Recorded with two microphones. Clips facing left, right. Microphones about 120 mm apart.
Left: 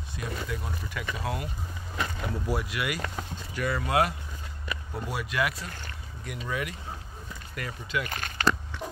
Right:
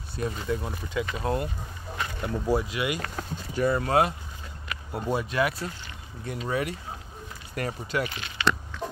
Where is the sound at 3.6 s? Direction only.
35° right (ahead or behind).